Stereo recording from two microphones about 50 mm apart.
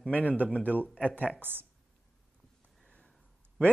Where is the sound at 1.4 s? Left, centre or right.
Right.